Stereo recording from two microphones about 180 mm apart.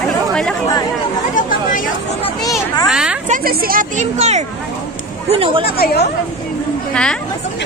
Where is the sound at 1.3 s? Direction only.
45° left (ahead or behind).